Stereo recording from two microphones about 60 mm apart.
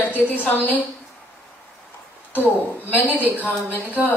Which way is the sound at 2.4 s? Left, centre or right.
Left.